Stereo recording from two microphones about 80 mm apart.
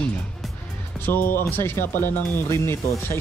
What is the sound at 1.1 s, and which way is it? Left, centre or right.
Speech, left.